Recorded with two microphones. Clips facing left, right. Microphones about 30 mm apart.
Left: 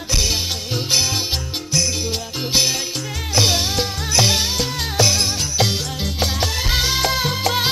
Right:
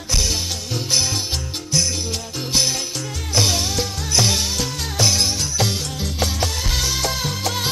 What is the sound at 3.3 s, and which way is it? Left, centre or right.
Music, centre.